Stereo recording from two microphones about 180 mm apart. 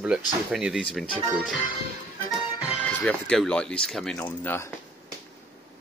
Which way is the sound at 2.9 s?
5° left (ahead or behind).